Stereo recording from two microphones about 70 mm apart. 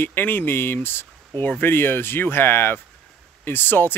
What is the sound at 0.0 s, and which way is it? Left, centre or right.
Speech, left.